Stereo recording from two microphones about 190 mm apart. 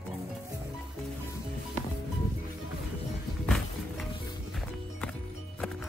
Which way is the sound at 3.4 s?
Centre (ahead or behind).